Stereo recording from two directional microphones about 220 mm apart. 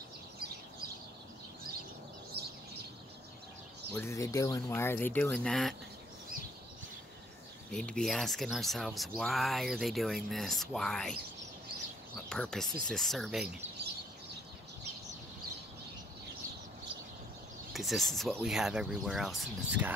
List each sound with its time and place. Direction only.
2.3 s bird: 45° right (ahead or behind)
3.9 s speech: 10° left (ahead or behind)
7.7 s speech: 5° left (ahead or behind)
12.3 s speech: 5° left (ahead or behind)
17.7 s speech: centre (ahead or behind)